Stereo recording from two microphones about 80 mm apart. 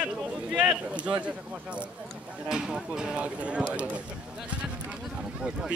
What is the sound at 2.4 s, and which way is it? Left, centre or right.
A man's voice, centre.